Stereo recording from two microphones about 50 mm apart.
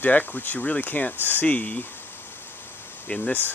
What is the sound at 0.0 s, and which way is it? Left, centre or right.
Speech, left.